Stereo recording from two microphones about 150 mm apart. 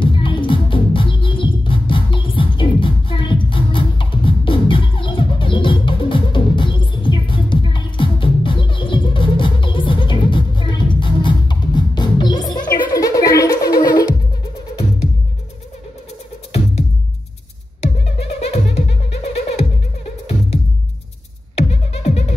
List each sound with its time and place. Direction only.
0.0 s music: 35° left (ahead or behind)
18.5 s music: 45° left (ahead or behind)
21.5 s music: 45° left (ahead or behind)